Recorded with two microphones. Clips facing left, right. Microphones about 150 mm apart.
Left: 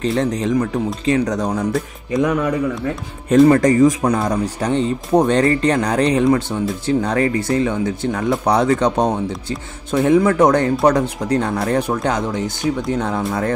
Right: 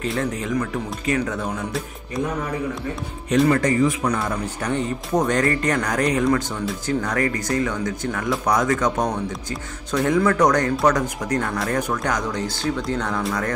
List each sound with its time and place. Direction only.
0.0 s speech: 30° left (ahead or behind)
2.2 s speech: 90° left
3.3 s speech: 35° left (ahead or behind)